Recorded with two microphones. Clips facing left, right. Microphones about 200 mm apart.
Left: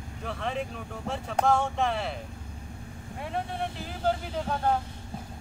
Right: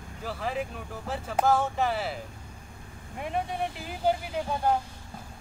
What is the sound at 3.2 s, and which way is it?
Speech, 15° right (ahead or behind).